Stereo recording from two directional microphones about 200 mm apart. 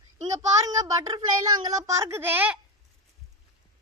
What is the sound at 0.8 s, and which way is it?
Speech, 20° right (ahead or behind).